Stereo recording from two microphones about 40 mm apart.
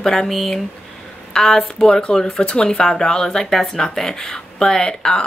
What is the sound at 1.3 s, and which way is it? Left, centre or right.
Speech, centre.